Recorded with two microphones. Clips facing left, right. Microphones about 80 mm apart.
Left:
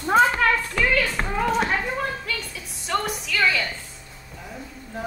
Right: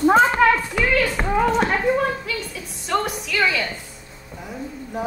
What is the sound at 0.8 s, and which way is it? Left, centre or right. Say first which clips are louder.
A woman's voice: right 2 dB; centre.